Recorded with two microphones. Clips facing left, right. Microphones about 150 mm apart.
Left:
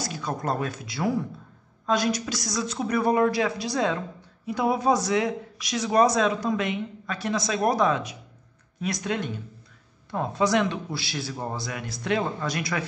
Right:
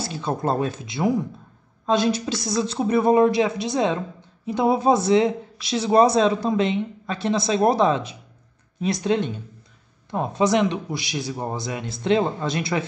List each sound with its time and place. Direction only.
0.0 s speech: 30° right (ahead or behind)